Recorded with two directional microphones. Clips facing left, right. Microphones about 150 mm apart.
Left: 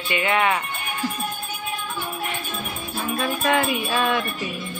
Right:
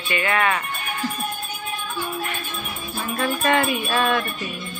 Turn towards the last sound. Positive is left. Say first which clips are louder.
# right 1 dB
turn(degrees=5)  # may be behind; listen again after turning